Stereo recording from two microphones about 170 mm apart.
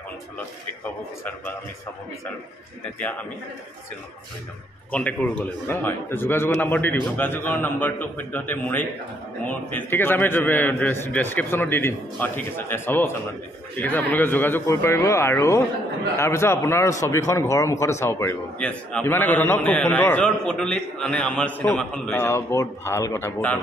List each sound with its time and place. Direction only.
3.0 s a man's voice: 10° left (ahead or behind)
4.9 s a man's voice: 10° left (ahead or behind)
22.2 s a man's voice: 15° left (ahead or behind)